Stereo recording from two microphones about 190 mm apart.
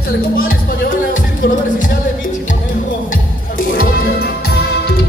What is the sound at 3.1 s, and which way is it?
Music, 50° left (ahead or behind).